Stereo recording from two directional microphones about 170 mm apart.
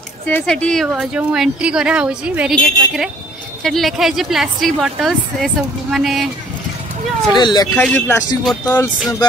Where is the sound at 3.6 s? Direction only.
Centre (ahead or behind).